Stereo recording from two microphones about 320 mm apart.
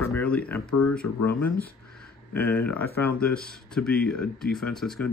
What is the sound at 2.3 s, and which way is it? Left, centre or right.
Speech, centre.